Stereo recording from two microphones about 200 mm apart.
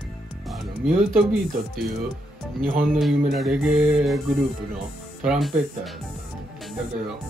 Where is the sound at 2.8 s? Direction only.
Centre (ahead or behind).